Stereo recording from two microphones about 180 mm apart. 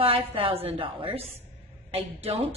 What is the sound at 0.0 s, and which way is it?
A woman's voice, 30° right (ahead or behind).